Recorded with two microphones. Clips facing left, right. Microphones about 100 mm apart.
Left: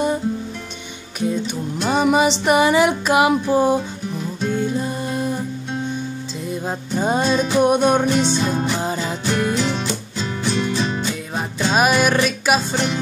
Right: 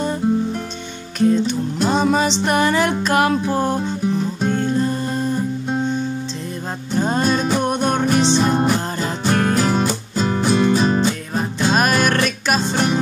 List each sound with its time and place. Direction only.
1.2 s music: 10° left (ahead or behind)
7.0 s music: 10° left (ahead or behind)
8.4 s music: 45° right (ahead or behind)
8.7 s music: 5° left (ahead or behind)
9.2 s music: 50° right (ahead or behind)
11.3 s music: 5° left (ahead or behind)